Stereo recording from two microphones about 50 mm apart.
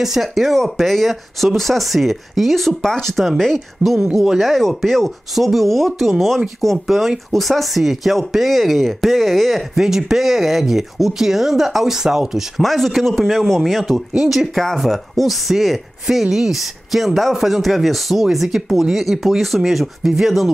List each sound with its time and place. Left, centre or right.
0.0 s speech: centre
3.8 s speech: right
4.2 s speech: centre
12.6 s speech: centre
14.6 s speech: centre